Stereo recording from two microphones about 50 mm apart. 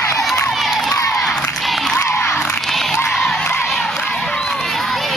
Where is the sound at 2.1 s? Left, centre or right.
Left.